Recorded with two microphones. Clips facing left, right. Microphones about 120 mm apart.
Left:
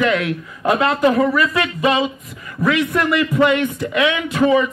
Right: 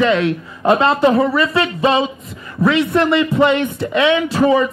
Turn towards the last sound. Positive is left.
turn(degrees=-35)  # may be behind; listen again after turning